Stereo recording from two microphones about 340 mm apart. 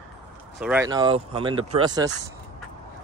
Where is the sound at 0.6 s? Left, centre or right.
Centre.